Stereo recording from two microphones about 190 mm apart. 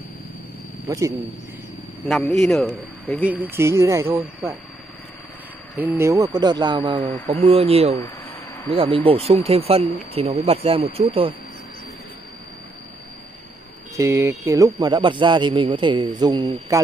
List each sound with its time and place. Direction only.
0.8 s speech: 20° right (ahead or behind)
2.0 s speech: centre (ahead or behind)
3.3 s speech: 10° right (ahead or behind)
5.8 s a man's voice: 10° right (ahead or behind)
7.0 s speech: 10° left (ahead or behind)
7.2 s speech: 30° right (ahead or behind)
13.9 s a man's voice: 15° right (ahead or behind)